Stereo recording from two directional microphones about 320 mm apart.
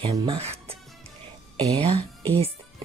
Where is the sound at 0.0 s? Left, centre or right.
Centre.